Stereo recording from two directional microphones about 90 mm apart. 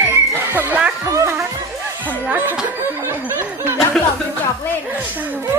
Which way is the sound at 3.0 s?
30° right (ahead or behind).